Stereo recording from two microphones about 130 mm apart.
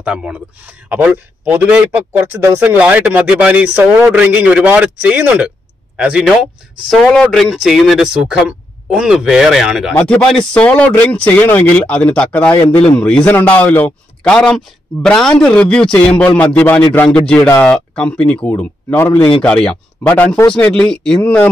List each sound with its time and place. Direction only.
0.0 s a man's voice: 10° right (ahead or behind)
9.9 s a man's voice: 10° left (ahead or behind)
12.6 s a man's voice: 50° left (ahead or behind)
12.9 s a man's voice: 10° left (ahead or behind)